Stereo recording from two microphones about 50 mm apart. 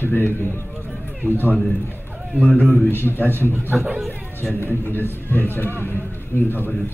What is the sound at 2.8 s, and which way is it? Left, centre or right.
Speech, left.